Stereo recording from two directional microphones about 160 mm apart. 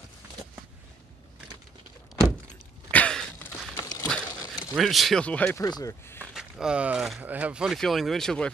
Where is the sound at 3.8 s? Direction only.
20° left (ahead or behind).